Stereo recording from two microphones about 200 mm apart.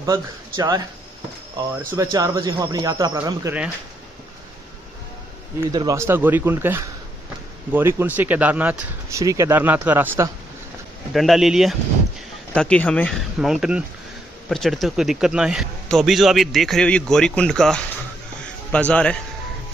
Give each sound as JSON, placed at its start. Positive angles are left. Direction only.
{"t": 0.0, "sound": "speech", "side_deg": -20}
{"t": 5.7, "sound": "speech", "side_deg": -20}
{"t": 11.1, "sound": "a man's voice", "side_deg": 0}